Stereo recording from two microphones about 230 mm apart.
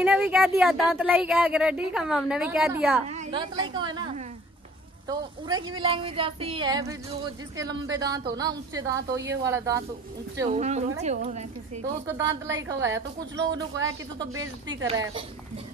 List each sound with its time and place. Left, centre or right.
0.0 s speech: centre
3.1 s a woman's voice: right
10.5 s a woman's voice: right
12.1 s a woman's voice: centre
14.3 s a woman's voice: right